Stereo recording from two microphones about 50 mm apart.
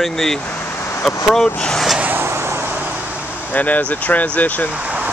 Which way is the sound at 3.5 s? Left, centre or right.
Left.